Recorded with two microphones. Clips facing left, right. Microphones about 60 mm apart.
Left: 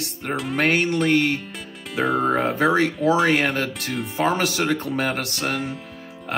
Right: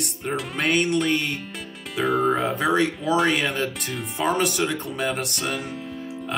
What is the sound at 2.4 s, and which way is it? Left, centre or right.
Speech, left.